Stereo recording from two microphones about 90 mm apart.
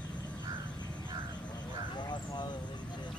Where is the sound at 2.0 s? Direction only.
55° left (ahead or behind).